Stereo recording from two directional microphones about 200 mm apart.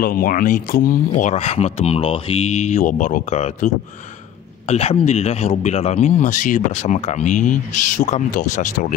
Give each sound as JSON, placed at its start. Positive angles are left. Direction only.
{"t": 0.0, "sound": "speech", "side_deg": 45}